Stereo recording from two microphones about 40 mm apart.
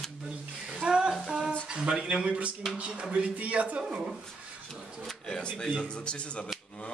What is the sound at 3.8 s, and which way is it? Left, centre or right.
Speech, centre.